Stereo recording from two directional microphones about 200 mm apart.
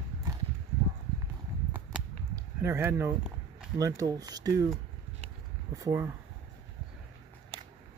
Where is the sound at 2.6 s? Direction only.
15° right (ahead or behind).